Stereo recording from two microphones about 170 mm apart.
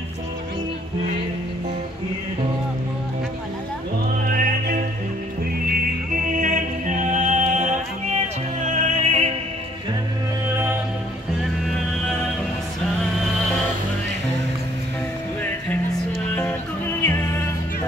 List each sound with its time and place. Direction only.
4.3 s music: 60° right (ahead or behind)
6.1 s music: 50° right (ahead or behind)
10.5 s music: 15° right (ahead or behind)
16.3 s music: 10° left (ahead or behind)